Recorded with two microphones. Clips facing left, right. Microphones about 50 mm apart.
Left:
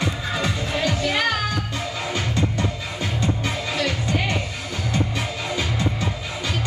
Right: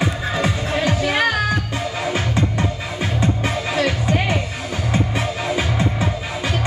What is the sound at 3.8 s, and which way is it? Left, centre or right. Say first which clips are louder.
Music: right 4 dB; centre.